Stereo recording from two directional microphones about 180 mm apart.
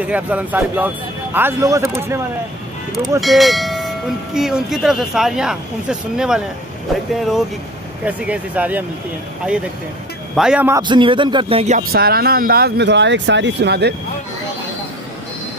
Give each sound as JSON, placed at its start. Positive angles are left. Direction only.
{"t": 0.0, "sound": "speech", "side_deg": -10}
{"t": 3.2, "sound": "speech", "side_deg": 0}
{"t": 10.3, "sound": "speech", "side_deg": -5}
{"t": 10.7, "sound": "speech", "side_deg": -25}
{"t": 11.9, "sound": "speech", "side_deg": -60}